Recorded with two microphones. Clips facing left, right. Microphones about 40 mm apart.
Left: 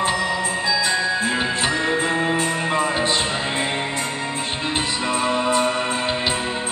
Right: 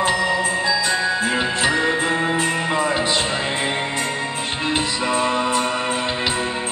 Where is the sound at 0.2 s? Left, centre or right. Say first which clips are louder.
Right 3 dB; centre.